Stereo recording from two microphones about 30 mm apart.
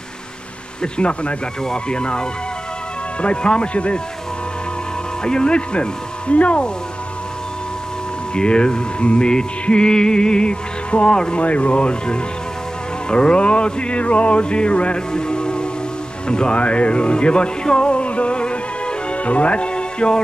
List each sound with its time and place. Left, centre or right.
0.9 s music: left
5.2 s music: left
8.4 s music: left
14.4 s music: left
15.1 s music: left
16.3 s speech: left
16.5 s music: left